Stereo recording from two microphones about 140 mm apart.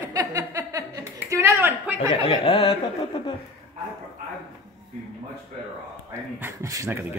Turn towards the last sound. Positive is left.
turn(degrees=-20)  # may be behind; listen again after turning